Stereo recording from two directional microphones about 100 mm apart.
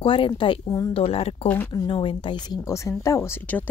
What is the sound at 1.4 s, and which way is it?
Speech, 20° left (ahead or behind).